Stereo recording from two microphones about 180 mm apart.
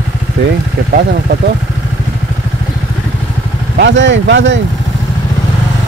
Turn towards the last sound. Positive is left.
turn(degrees=-80)